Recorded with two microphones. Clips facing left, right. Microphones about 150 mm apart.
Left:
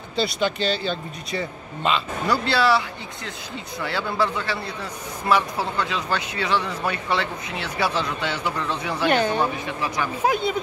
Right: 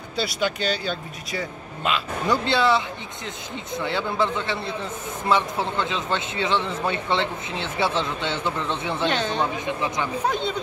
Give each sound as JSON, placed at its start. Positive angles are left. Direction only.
{"t": 0.1, "sound": "speech", "side_deg": 0}
{"t": 2.2, "sound": "a man's voice", "side_deg": -20}
{"t": 3.8, "sound": "a man's voice", "side_deg": -20}
{"t": 9.0, "sound": "speech", "side_deg": 10}
{"t": 9.7, "sound": "a man's voice", "side_deg": -20}
{"t": 10.2, "sound": "speech", "side_deg": 10}